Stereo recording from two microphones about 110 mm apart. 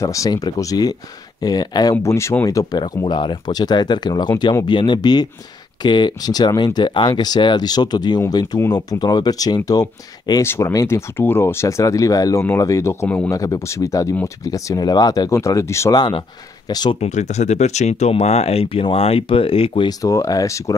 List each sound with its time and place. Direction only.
0.0 s speech: 30° left (ahead or behind)
2.0 s speech: 25° left (ahead or behind)
16.6 s speech: 40° left (ahead or behind)
17.0 s speech: 90° left; by 19.9 s 60° left (ahead or behind)
19.9 s speech: 30° left (ahead or behind)